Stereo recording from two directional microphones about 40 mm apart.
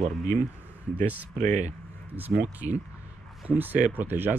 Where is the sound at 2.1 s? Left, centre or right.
Right.